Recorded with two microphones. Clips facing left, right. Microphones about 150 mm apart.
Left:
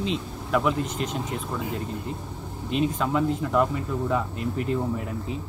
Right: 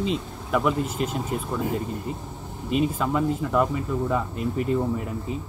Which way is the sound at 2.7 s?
5° right (ahead or behind).